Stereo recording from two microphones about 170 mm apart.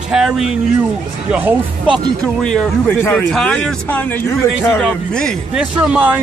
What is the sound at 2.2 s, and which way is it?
Speech, 5° left (ahead or behind).